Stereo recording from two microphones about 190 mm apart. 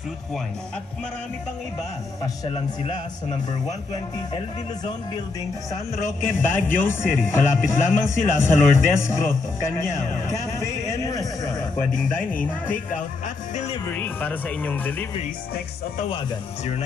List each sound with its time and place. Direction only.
2.5 s speech: 30° left (ahead or behind)
6.2 s speech: 10° left (ahead or behind)
13.8 s speech: 10° left (ahead or behind)